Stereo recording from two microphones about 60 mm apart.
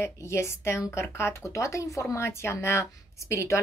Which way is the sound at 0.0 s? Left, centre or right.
Left.